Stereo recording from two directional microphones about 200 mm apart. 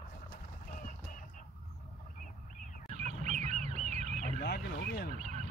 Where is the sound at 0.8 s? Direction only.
40° left (ahead or behind).